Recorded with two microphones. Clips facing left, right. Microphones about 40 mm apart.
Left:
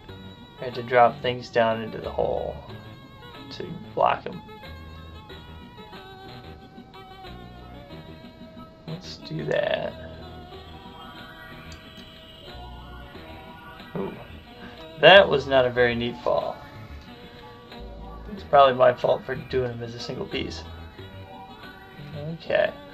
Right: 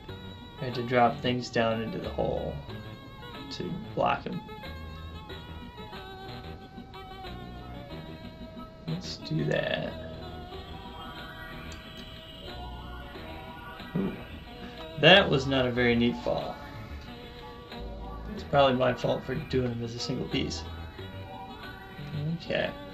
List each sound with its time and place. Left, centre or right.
0.6 s speech: centre
8.5 s music: centre
9.6 s burping: centre
13.9 s music: centre
15.0 s speech: centre
18.3 s speech: centre
22.0 s music: centre